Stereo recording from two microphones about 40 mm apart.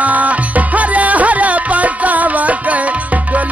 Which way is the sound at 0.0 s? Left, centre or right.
Right.